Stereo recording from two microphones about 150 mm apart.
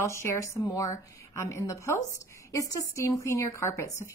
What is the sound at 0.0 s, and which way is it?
A woman's voice, 20° left (ahead or behind).